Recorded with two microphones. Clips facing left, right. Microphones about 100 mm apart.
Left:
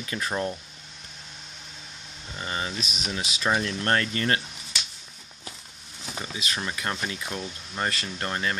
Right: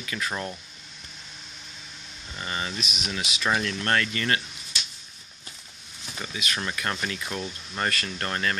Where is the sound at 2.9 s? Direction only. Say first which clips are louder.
Even; 30° left (ahead or behind).